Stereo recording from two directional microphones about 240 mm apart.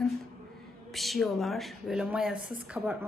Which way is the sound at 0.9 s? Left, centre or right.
Centre.